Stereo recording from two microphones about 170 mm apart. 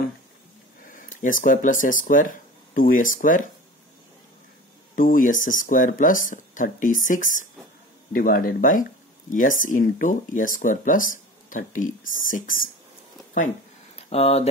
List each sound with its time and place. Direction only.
0.8 s speech: 50° left (ahead or behind)
4.9 s speech: 55° left (ahead or behind)
13.9 s speech: 35° left (ahead or behind)